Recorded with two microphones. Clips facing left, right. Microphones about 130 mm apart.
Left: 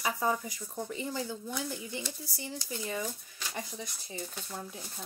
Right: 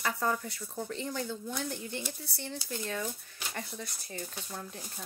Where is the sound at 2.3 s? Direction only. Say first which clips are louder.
Even; 65° right (ahead or behind).